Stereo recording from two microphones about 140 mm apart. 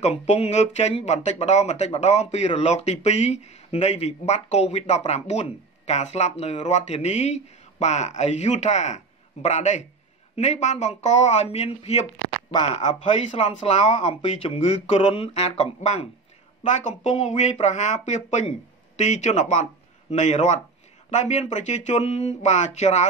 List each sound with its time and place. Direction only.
0.0 s speech: 55° left (ahead or behind)